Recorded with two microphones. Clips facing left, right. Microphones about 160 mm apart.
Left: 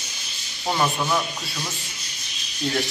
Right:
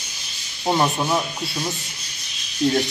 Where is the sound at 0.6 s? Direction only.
25° right (ahead or behind).